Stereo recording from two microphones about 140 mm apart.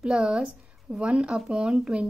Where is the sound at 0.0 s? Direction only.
5° right (ahead or behind).